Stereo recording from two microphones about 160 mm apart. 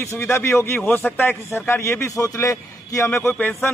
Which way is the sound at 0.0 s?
15° left (ahead or behind).